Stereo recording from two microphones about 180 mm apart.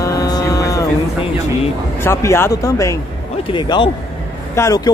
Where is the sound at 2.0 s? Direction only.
15° left (ahead or behind).